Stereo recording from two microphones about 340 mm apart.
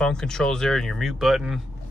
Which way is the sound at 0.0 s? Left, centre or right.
Centre.